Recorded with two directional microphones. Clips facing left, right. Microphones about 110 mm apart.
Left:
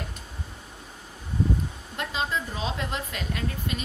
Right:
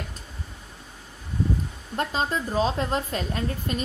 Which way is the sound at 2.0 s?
40° right (ahead or behind).